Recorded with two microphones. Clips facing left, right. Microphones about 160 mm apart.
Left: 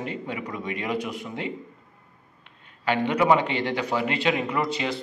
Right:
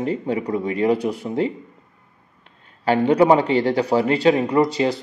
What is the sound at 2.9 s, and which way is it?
Speech, 35° right (ahead or behind).